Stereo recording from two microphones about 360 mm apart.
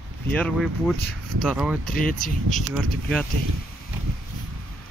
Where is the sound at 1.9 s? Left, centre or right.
Left.